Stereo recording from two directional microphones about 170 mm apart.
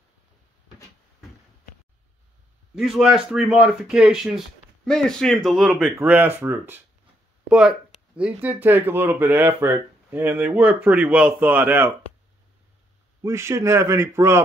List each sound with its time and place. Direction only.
2.7 s speech: 5° right (ahead or behind)
13.2 s speech: 15° right (ahead or behind)